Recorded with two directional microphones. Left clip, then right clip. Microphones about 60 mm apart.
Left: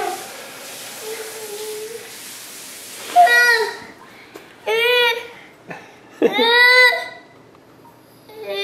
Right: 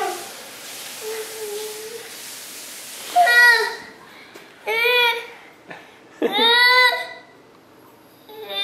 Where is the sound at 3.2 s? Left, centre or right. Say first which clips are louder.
Left 4 dB; left.